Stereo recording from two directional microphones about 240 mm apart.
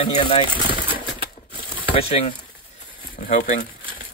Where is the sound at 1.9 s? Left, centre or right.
Left.